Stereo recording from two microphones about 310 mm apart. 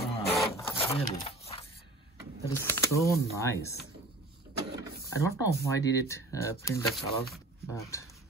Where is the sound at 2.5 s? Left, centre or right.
Centre.